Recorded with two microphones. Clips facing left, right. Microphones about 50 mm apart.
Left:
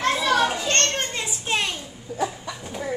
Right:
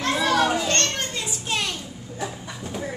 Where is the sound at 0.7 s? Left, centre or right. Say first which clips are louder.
Left 1 dB; left.